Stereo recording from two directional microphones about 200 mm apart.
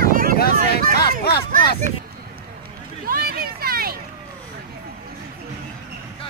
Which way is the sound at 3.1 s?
50° right (ahead or behind).